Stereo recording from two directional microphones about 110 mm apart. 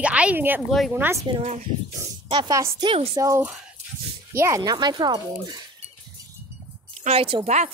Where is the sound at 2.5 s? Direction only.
25° right (ahead or behind).